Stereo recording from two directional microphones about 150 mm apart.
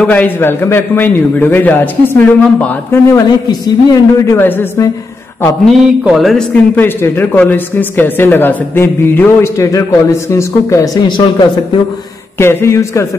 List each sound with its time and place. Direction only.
0.0 s a man's voice: 10° left (ahead or behind)
5.7 s a man's voice: centre (ahead or behind); by 11.1 s 20° left (ahead or behind)
11.1 s speech: 35° left (ahead or behind)
12.4 s a man's voice: 15° left (ahead or behind)